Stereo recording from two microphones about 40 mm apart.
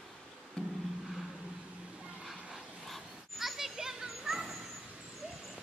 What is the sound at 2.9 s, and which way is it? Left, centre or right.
Children playing, centre.